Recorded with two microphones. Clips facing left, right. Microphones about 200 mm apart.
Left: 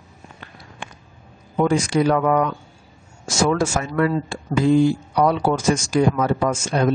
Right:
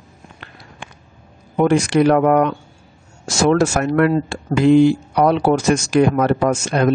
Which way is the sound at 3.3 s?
70° right (ahead or behind).